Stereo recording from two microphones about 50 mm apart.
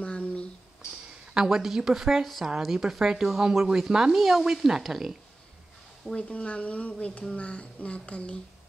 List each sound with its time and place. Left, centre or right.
0.0 s a sound: left
1.3 s speech: centre
6.0 s speech: left